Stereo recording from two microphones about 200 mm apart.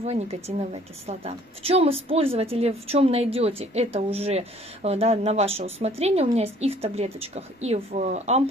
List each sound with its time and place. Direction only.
0.0 s a woman's voice: 30° right (ahead or behind)